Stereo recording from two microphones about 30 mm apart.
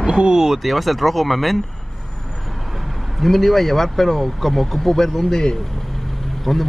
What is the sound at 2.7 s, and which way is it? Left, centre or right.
Speech, centre.